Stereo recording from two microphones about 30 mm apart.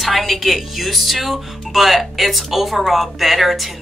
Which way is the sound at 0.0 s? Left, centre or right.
Centre.